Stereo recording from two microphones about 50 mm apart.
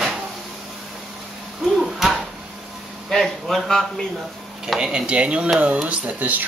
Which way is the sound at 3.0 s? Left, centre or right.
Centre.